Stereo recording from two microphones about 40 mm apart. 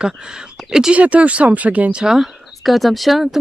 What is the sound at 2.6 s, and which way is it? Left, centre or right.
Speech, centre.